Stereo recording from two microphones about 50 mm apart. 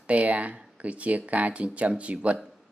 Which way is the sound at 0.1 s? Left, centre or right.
Right.